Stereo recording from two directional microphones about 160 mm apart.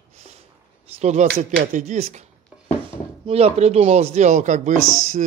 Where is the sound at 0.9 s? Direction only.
45° right (ahead or behind).